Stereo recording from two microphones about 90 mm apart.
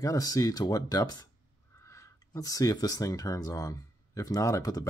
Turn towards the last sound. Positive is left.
turn(degrees=40)  # may be behind; listen again after turning